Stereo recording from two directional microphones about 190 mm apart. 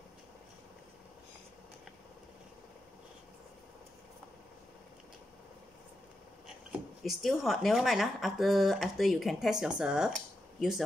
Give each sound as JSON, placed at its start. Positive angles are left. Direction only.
{"t": 6.4, "sound": "speech", "side_deg": 0}